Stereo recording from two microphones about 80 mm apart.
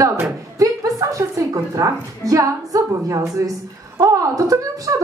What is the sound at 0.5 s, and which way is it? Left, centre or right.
A woman's voice, right.